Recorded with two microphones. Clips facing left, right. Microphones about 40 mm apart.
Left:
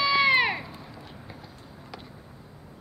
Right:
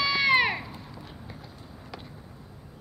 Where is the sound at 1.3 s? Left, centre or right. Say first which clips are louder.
Even; centre.